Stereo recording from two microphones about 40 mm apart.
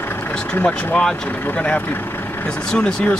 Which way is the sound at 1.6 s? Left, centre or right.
Left.